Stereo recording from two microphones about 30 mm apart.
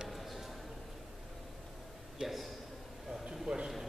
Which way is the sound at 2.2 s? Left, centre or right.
Centre.